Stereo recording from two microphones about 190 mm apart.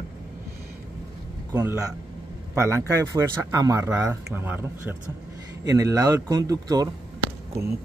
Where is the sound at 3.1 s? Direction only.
15° right (ahead or behind).